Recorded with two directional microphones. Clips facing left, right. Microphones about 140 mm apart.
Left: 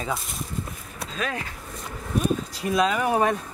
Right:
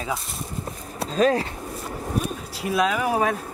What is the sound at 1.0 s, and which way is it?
Speech, 35° right (ahead or behind).